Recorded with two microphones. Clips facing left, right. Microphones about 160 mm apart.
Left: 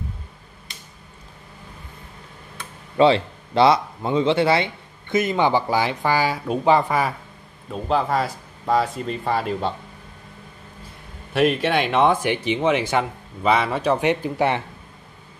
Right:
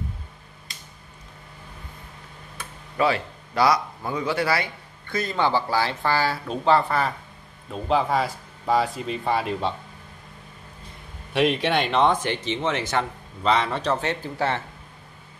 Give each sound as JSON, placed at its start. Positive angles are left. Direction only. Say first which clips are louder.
{"t": 3.0, "sound": "speech", "louder": "left 7 dB", "side_deg": 25}
{"t": 7.7, "sound": "speech", "louder": "left 1 dB", "side_deg": 0}
{"t": 11.3, "sound": "speech", "louder": "left 2 dB", "side_deg": 0}